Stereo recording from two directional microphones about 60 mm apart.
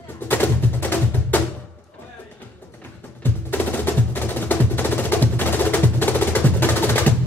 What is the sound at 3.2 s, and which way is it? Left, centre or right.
Music, left.